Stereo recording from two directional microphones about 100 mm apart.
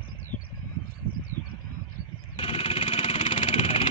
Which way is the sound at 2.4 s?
80° left.